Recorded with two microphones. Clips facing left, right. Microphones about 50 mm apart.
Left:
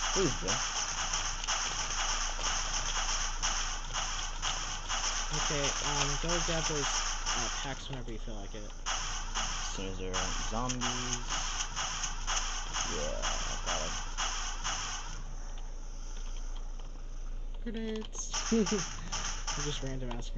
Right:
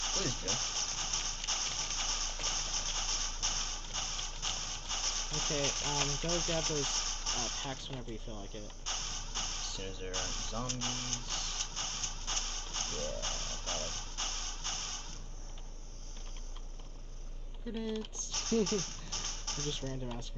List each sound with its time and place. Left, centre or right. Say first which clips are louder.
0.0 s a sound: left 6 dB; left
8.5 s music: left 8 dB; left
17.8 s speech: even; left